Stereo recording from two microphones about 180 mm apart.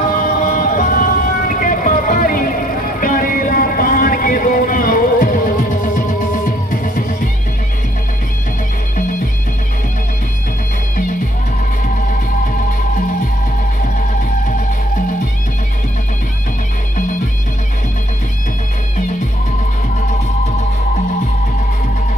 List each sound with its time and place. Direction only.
0.1 s music: 50° left (ahead or behind)